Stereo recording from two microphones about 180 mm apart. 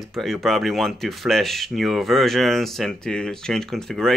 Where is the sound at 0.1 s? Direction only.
Centre (ahead or behind).